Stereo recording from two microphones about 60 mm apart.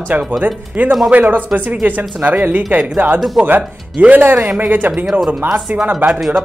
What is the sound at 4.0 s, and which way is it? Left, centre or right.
Speech, right.